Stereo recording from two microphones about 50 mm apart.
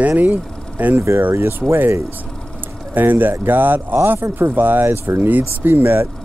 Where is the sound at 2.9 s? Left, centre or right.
Right.